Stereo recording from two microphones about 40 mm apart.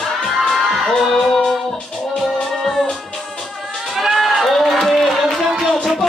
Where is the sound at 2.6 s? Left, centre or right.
Centre.